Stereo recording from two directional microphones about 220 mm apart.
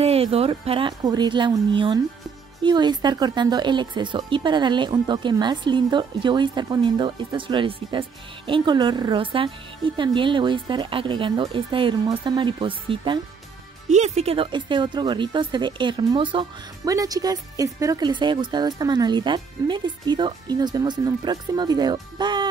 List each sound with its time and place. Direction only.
0.0 s speech: 25° right (ahead or behind)